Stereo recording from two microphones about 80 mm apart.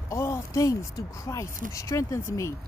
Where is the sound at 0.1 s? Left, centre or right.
Left.